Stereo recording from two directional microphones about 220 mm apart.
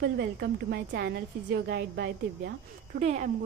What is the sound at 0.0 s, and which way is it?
A woman's voice, 45° right (ahead or behind).